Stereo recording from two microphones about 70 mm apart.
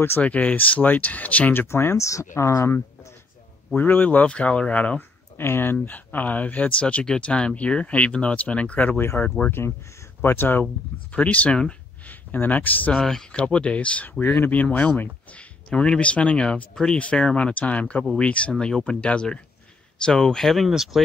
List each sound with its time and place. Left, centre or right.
0.2 s speech: left
1.7 s speech: left
3.7 s speech: left
5.4 s speech: left
11.1 s speech: centre
13.0 s speech: centre
14.2 s speech: left; by 21.0 s centre